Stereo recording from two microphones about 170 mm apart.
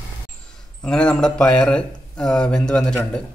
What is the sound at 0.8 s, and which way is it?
Speech, 5° left (ahead or behind).